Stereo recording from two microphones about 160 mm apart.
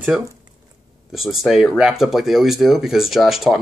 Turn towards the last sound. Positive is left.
turn(degrees=0)  # may be behind; listen again after turning